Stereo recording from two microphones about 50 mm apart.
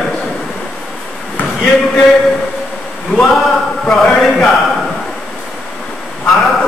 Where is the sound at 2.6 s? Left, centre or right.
Centre.